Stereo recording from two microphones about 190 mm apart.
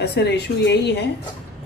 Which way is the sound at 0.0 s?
65° left (ahead or behind).